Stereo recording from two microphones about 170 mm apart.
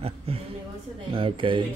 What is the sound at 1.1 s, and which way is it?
Speech, 30° right (ahead or behind).